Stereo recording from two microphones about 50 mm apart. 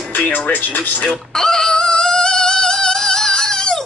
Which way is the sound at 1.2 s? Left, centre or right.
Centre.